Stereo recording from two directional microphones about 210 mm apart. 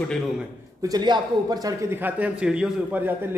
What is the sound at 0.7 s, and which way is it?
A man's voice, 20° right (ahead or behind).